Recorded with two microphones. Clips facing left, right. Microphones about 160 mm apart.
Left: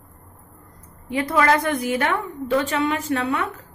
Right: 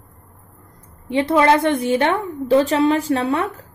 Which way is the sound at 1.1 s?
25° right (ahead or behind).